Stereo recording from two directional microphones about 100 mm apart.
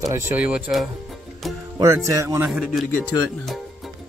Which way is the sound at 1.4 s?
Centre (ahead or behind).